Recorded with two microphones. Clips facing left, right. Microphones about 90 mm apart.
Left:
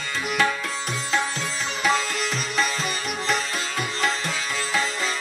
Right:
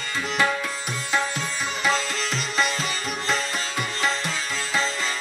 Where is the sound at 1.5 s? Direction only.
Centre (ahead or behind).